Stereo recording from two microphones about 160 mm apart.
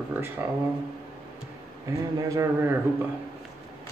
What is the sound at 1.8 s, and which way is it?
Speech, 20° right (ahead or behind).